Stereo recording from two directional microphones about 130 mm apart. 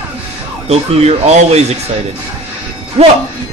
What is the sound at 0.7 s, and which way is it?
Speech, 55° right (ahead or behind).